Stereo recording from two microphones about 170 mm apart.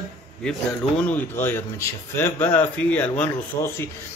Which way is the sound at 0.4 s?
5° left (ahead or behind).